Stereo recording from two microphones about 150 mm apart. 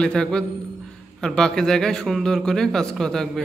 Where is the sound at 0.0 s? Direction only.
5° left (ahead or behind).